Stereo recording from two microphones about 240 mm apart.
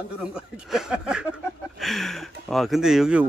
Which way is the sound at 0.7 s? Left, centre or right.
Centre.